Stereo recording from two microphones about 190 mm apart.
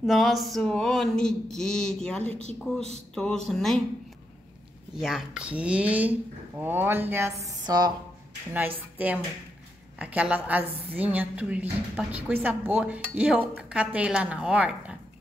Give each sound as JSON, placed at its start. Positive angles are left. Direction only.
{"t": 0.0, "sound": "a sound", "side_deg": 0}
{"t": 3.4, "sound": "a sound", "side_deg": 0}
{"t": 4.9, "sound": "a woman's voice", "side_deg": -5}
{"t": 8.5, "sound": "a woman's voice", "side_deg": -10}
{"t": 10.7, "sound": "a woman's voice", "side_deg": -30}
{"t": 11.0, "sound": "a woman's voice", "side_deg": -10}